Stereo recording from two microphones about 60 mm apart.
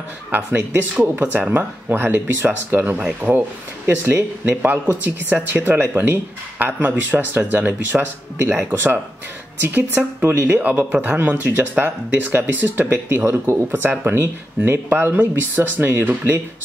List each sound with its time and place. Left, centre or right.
0.3 s speech: right
3.0 s speech: centre
3.8 s speech: right
13.2 s speech: right
13.7 s speech: right